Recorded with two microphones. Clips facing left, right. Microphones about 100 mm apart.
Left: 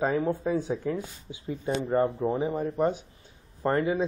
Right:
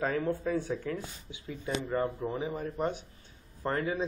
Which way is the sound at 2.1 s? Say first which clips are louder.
Left 7 dB; 25° left (ahead or behind).